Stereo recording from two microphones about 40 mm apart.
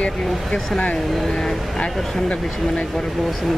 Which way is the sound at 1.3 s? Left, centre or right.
Centre.